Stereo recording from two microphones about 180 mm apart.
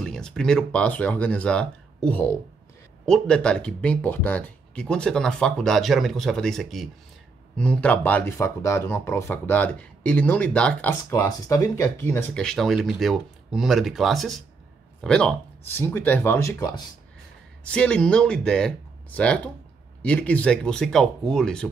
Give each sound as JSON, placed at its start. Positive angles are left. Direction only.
{"t": 0.0, "sound": "speech", "side_deg": 5}